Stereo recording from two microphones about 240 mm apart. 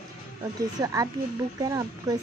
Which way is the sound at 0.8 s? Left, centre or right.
Centre.